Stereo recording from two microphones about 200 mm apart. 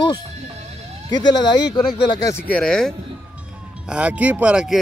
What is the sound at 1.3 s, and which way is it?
Speech, 20° left (ahead or behind).